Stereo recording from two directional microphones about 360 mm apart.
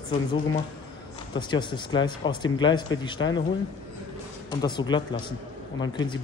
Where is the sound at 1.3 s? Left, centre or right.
Centre.